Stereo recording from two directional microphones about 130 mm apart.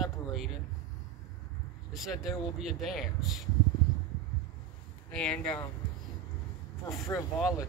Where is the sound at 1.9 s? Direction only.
Centre (ahead or behind).